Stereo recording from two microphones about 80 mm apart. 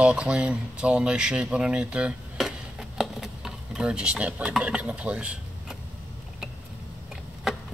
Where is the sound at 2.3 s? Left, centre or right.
Centre.